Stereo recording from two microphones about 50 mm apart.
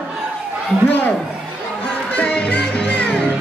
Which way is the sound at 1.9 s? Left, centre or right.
Centre.